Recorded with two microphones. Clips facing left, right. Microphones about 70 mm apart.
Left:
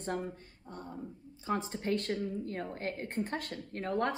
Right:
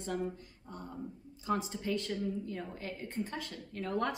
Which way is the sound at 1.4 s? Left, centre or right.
Left.